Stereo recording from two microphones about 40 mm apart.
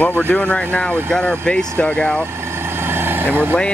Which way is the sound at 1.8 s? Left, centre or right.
Left.